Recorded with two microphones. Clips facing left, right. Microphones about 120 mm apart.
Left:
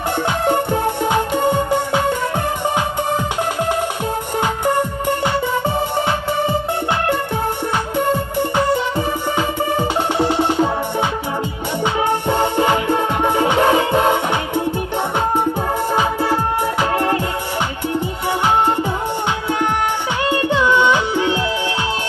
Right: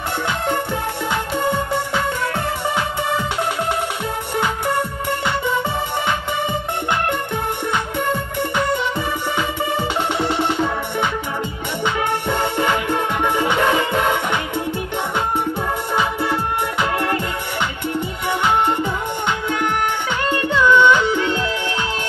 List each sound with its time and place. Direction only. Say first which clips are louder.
0.3 s music: left 5 dB; 45° left (ahead or behind)
8.1 s music: left 3 dB; 40° left (ahead or behind)
12.1 s music: left 3 dB; 40° left (ahead or behind)
15.9 s music: left 2 dB; 35° left (ahead or behind)
18.4 s music: left 2 dB; 40° left (ahead or behind)
20.2 s music: even; 10° left (ahead or behind)